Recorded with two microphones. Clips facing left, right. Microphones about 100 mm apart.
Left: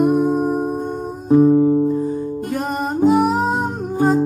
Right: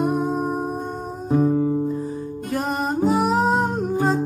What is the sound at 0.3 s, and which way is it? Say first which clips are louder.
Music: left 5 dB; 5° left (ahead or behind).